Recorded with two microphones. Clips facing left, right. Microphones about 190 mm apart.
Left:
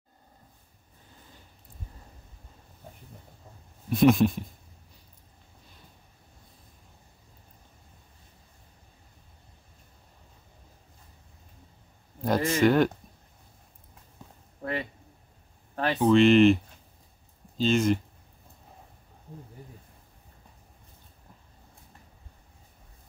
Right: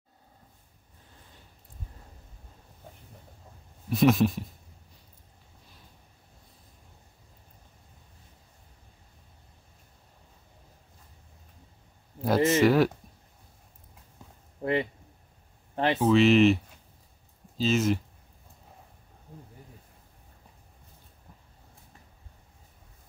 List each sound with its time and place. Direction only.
3.9 s speech: centre (ahead or behind)
12.4 s speech: 20° right (ahead or behind)
12.6 s speech: 5° right (ahead or behind)
14.6 s a sound: 25° right (ahead or behind)
16.0 s speech: centre (ahead or behind)